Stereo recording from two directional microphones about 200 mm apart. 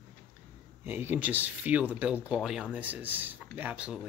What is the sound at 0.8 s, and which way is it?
Speech, 10° right (ahead or behind).